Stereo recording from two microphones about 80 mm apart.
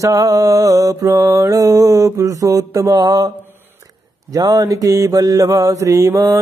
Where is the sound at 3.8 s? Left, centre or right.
Right.